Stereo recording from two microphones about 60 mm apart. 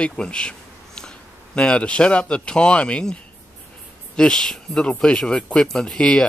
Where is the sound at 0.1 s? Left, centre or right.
Centre.